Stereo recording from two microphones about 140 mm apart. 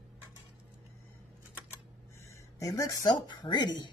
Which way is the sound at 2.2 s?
25° left (ahead or behind).